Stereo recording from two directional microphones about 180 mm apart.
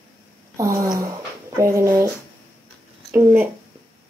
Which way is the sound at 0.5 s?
15° right (ahead or behind).